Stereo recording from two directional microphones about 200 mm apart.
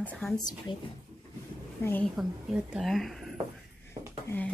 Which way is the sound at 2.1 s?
5° right (ahead or behind).